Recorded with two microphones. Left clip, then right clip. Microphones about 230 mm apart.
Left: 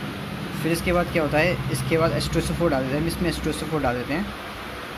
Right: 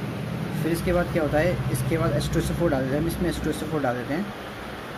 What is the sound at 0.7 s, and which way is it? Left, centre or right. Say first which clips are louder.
Speech: left 2 dB; centre.